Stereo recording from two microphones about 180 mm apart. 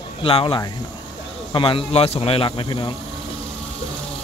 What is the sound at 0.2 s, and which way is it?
Speech, 30° left (ahead or behind).